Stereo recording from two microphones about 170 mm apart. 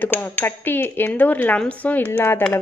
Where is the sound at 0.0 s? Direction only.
10° left (ahead or behind).